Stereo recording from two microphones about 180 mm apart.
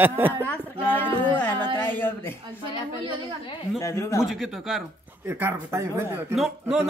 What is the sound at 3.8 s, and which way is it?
Speech, 15° left (ahead or behind).